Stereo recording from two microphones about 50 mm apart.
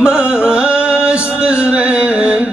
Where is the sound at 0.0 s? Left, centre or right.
Centre.